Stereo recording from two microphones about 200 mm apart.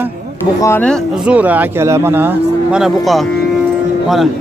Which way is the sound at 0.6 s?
10° left (ahead or behind).